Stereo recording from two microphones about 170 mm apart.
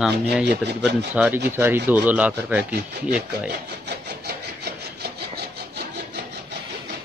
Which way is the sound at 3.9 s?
75° right (ahead or behind).